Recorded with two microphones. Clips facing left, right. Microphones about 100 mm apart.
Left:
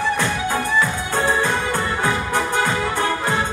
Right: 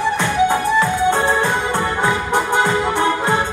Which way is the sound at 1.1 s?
20° right (ahead or behind).